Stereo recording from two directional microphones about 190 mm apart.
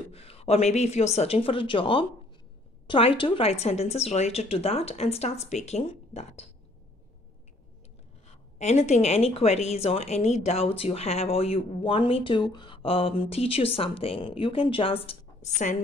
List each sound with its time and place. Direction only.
0.1 s speech: 30° left (ahead or behind)
8.5 s speech: 35° left (ahead or behind)